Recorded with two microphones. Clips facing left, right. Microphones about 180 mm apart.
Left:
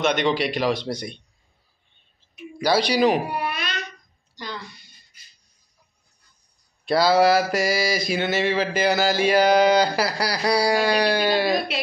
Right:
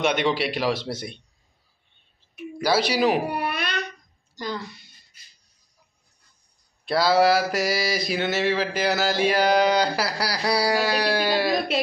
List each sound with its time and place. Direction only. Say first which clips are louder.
0.0 s mantra: left 1 dB; 5° right (ahead or behind)
2.6 s mantra: left 2 dB; 5° right (ahead or behind)
3.3 s a sound: right 1 dB; 60° right (ahead or behind)
4.6 s mantra: right 3 dB; centre (ahead or behind)
6.8 s mantra: left 2 dB; centre (ahead or behind)